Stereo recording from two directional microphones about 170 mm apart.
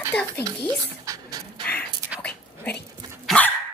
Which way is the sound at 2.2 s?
10° left (ahead or behind).